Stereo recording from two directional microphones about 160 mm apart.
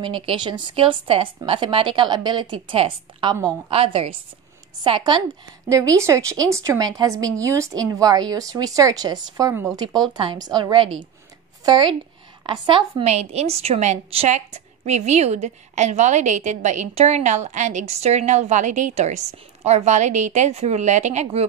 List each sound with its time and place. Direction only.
0.0 s a woman's voice: 30° right (ahead or behind)
5.9 s a woman's voice: 20° right (ahead or behind); by 21.5 s 45° right (ahead or behind)